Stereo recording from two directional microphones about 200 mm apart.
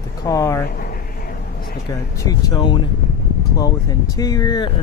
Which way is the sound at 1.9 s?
15° left (ahead or behind).